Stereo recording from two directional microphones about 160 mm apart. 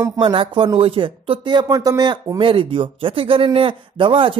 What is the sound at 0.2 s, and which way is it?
Speech, 30° right (ahead or behind).